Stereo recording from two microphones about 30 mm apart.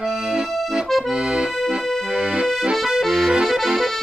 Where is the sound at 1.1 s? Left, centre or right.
Right.